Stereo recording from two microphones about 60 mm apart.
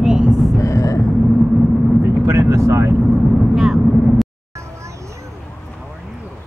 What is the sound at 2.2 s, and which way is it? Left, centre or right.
Speech, right.